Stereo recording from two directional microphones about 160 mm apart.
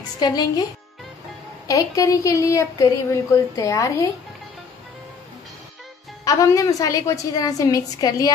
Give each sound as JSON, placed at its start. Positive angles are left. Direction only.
{"t": 0.2, "sound": "speech", "side_deg": 25}
{"t": 1.7, "sound": "speech", "side_deg": 20}
{"t": 6.2, "sound": "speech", "side_deg": 20}